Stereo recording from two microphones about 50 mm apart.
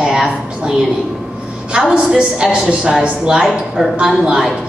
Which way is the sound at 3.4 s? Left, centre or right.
Centre.